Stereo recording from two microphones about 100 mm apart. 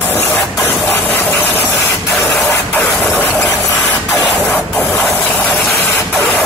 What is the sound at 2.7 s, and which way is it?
Printer, 20° left (ahead or behind).